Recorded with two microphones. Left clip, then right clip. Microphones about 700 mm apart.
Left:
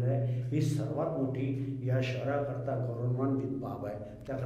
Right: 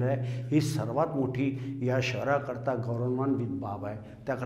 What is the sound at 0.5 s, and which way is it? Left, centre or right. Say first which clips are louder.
A man's voice: right 6 dB; right.